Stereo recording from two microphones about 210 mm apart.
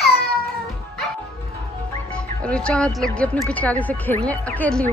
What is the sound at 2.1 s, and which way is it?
Speech, 5° left (ahead or behind).